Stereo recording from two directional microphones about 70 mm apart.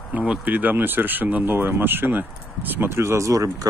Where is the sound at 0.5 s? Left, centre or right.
Right.